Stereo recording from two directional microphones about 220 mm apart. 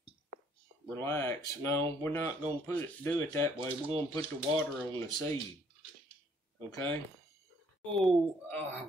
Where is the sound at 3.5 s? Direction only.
25° right (ahead or behind).